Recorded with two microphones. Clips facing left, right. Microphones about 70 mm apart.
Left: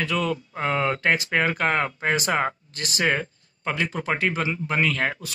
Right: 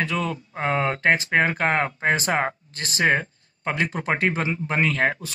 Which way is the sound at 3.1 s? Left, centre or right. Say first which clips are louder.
Right 3 dB; right.